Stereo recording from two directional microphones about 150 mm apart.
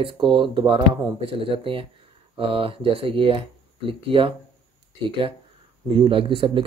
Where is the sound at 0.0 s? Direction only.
35° right (ahead or behind).